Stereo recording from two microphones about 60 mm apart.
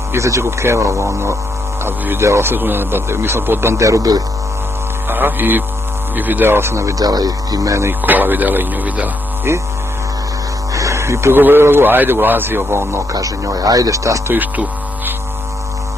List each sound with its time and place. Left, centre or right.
0.1 s a man's voice: right
3.7 s speech: right
5.0 s a man's voice: right
7.0 s speech: right
8.0 s a man's voice: right
9.5 s speech: right
10.7 s a sound: right
11.4 s a man's voice: right
13.1 s speech: right
14.4 s music: right